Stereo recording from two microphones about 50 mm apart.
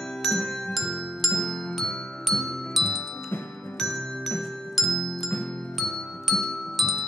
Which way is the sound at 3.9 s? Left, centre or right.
Centre.